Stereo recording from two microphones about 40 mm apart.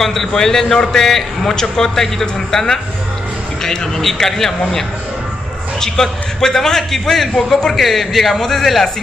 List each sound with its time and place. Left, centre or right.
0.0 s a man's voice: centre